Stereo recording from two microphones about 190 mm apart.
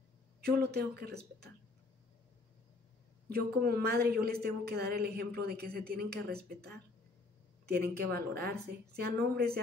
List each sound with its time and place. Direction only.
0.4 s speech: 60° right (ahead or behind)
3.3 s a woman's voice: 55° right (ahead or behind)
7.6 s speech: 55° right (ahead or behind)